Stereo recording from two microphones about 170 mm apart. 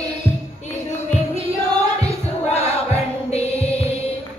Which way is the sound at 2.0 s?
40° left (ahead or behind).